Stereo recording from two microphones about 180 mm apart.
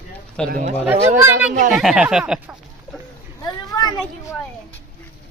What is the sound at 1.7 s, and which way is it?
Speech, 5° right (ahead or behind).